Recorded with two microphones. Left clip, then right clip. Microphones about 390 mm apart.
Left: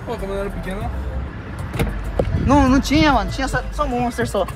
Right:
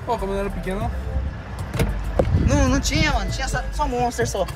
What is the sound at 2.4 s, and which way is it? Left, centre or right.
Speech, centre.